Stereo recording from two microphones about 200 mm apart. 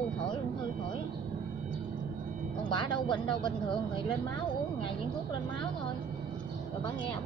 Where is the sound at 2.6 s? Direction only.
25° left (ahead or behind).